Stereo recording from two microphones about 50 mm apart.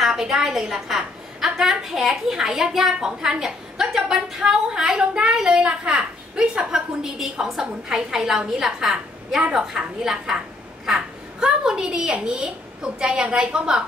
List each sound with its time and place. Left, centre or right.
0.0 s a woman's voice: centre